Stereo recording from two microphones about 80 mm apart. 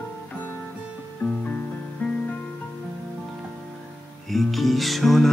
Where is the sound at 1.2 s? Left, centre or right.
Centre.